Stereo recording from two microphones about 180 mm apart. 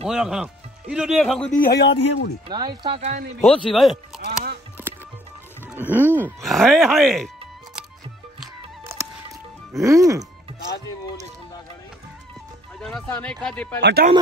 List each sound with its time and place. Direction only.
0.1 s speech: 5° right (ahead or behind)
1.5 s a man's voice: 60° left (ahead or behind)
2.4 s speech: 25° right (ahead or behind)
3.0 s speech: 40° right (ahead or behind)
3.3 s speech: 5° left (ahead or behind)
4.2 s speech: 60° right (ahead or behind)
5.7 s music: 10° right (ahead or behind)
6.4 s speech: centre (ahead or behind)
9.8 s music: 15° right (ahead or behind)
12.8 s speech: 5° left (ahead or behind)
13.7 s speech: 75° right (ahead or behind)